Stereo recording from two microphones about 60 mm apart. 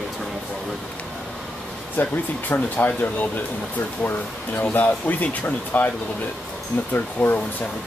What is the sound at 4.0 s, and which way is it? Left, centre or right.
Speech, left.